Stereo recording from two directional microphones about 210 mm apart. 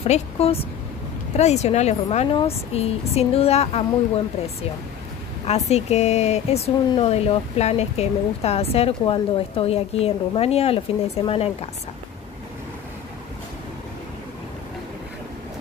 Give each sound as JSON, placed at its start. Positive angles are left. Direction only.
{"t": 0.0, "sound": "speech", "side_deg": 30}
{"t": 5.4, "sound": "speech", "side_deg": 30}